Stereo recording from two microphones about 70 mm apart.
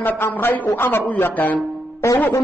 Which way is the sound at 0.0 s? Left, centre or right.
Left.